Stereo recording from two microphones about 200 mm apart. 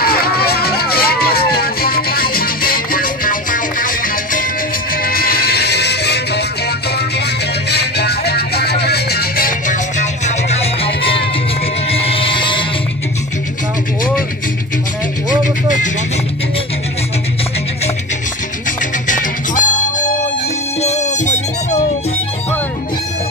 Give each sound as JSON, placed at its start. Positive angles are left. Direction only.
{"t": 0.0, "sound": "music", "side_deg": 50}
{"t": 7.7, "sound": "music", "side_deg": 55}
{"t": 11.9, "sound": "a sound", "side_deg": 30}
{"t": 19.0, "sound": "music", "side_deg": 40}